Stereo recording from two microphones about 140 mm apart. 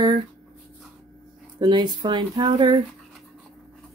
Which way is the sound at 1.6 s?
30° right (ahead or behind).